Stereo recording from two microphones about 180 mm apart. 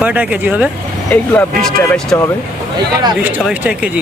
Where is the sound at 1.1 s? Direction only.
5° left (ahead or behind).